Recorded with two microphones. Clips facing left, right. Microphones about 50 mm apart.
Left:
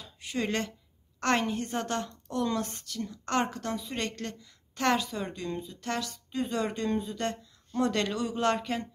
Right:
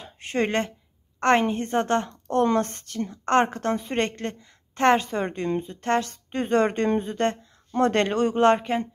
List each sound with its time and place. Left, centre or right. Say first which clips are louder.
0.0 s a sound: right 7 dB; right
1.2 s a woman's voice: right 7 dB; right
2.2 s a woman's voice: right 9 dB; right
8.5 s a woman's voice: right 6 dB; right